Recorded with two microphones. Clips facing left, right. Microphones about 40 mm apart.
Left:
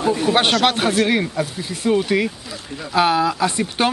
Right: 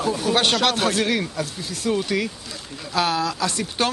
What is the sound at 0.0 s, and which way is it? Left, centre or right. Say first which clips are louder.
A man's voice: left 4 dB; left.